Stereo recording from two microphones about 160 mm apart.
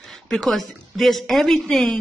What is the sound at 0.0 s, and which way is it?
Speech, centre (ahead or behind).